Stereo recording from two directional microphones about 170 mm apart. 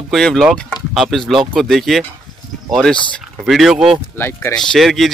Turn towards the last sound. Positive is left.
turn(degrees=0)  # may be behind; listen again after turning